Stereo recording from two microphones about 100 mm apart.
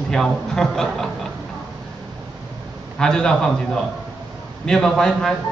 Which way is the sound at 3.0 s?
5° left (ahead or behind).